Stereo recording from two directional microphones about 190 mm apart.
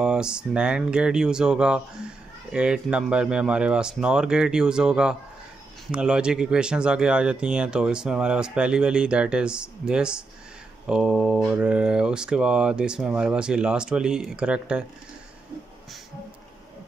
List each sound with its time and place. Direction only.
0.0 s speech: 5° right (ahead or behind)